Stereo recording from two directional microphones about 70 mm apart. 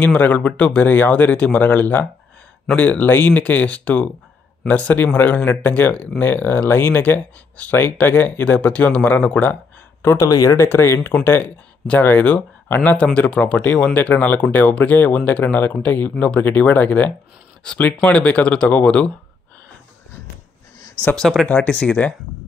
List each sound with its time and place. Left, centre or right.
0.0 s speech: left
10.1 s speech: left
10.5 s speech: left
11.2 s speech: left
17.6 s speech: centre
21.2 s speech: centre
21.5 s speech: centre